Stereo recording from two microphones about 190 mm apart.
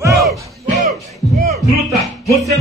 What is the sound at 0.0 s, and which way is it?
Music, 15° right (ahead or behind).